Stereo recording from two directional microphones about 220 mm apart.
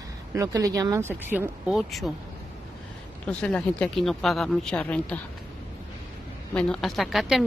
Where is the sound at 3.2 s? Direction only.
5° left (ahead or behind).